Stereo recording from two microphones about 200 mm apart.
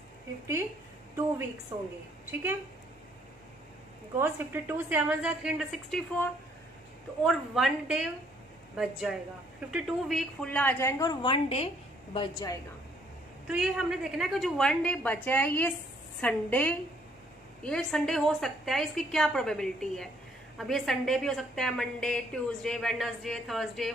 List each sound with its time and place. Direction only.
1.7 s a woman's voice: 15° right (ahead or behind)
4.2 s a woman's voice: 10° right (ahead or behind)
7.2 s a woman's voice: centre (ahead or behind); by 12.5 s 25° left (ahead or behind)
13.5 s a woman's voice: 5° right (ahead or behind)